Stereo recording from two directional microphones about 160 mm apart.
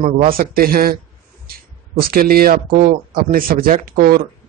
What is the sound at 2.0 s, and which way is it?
Speech, 65° right (ahead or behind).